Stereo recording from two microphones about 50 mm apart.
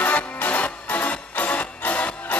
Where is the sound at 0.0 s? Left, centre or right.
Left.